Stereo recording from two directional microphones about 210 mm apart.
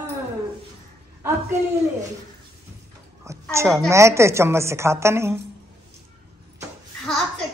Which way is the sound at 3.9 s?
15° right (ahead or behind).